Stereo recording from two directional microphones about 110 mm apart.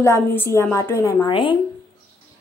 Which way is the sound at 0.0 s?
20° left (ahead or behind).